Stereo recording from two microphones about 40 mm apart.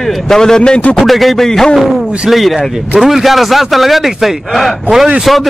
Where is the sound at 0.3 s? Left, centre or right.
Centre.